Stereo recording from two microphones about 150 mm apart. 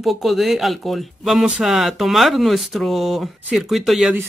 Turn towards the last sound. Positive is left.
turn(degrees=0)  # may be behind; listen again after turning